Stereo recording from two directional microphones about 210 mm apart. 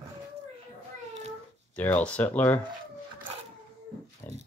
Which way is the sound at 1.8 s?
5° left (ahead or behind).